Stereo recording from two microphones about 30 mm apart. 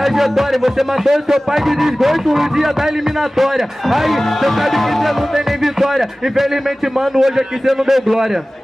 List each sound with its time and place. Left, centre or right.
0.0 s speech: centre
5.3 s speech: centre